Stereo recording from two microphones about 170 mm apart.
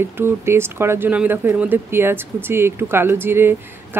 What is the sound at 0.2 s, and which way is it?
Speech, 15° right (ahead or behind).